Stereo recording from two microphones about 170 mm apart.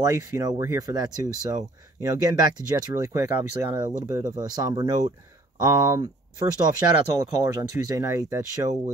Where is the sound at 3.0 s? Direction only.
20° right (ahead or behind).